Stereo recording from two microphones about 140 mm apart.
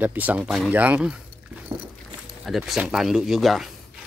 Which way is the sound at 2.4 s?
Centre (ahead or behind).